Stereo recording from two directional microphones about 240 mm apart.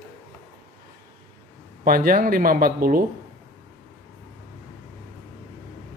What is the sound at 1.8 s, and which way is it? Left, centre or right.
Speech, right.